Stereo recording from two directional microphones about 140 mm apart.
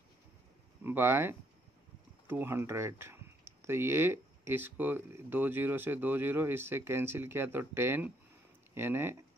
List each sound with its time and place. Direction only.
0.8 s speech: 15° right (ahead or behind)